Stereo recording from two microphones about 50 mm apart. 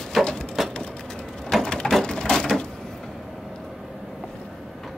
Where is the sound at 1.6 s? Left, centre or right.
Centre.